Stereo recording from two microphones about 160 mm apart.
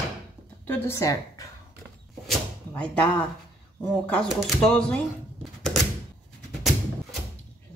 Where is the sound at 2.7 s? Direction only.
10° left (ahead or behind).